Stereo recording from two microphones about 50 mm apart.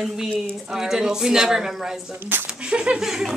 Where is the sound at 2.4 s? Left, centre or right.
Centre.